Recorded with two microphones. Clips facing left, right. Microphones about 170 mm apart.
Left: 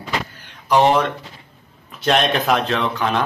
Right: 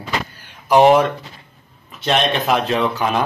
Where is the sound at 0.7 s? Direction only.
10° right (ahead or behind).